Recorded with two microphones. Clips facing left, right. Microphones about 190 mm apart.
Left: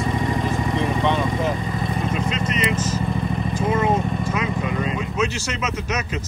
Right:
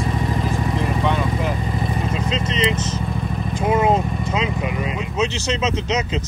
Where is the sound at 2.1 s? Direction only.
25° right (ahead or behind).